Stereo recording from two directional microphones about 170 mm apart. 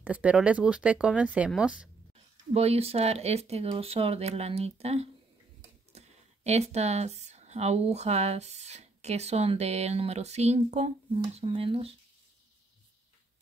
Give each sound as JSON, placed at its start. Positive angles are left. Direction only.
{"t": 0.0, "sound": "speech", "side_deg": -5}
{"t": 2.5, "sound": "speech", "side_deg": -35}